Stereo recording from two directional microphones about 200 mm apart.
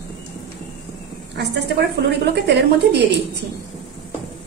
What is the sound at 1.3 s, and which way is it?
A woman's voice, 55° right (ahead or behind).